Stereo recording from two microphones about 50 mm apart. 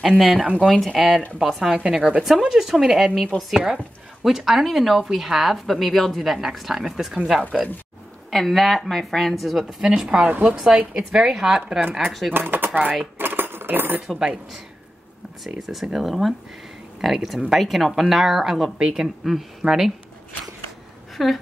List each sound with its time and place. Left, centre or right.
0.0 s speech: centre
8.3 s speech: centre
9.8 s speech: centre
12.4 s speech: right
13.2 s cutlery: right
14.1 s speech: centre
15.6 s speech: centre
21.2 s speech: centre